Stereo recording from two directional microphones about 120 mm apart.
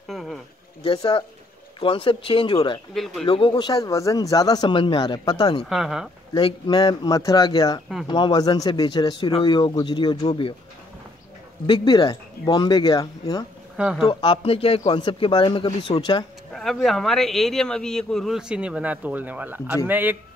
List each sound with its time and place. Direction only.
0.1 s a sound: centre (ahead or behind)
1.8 s speech: 50° left (ahead or behind)
2.9 s speech: centre (ahead or behind)
3.3 s speech: 45° left (ahead or behind)
5.7 s speech: 5° right (ahead or behind)
6.3 s speech: 40° left (ahead or behind)
11.6 s speech: 40° left (ahead or behind)
13.7 s speech: 5° right (ahead or behind)
14.0 s speech: 45° left (ahead or behind)
16.5 s a man's voice: centre (ahead or behind); by 20.2 s 15° right (ahead or behind)